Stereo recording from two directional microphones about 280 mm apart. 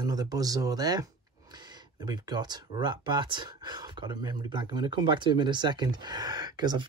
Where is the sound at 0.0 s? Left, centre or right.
Centre.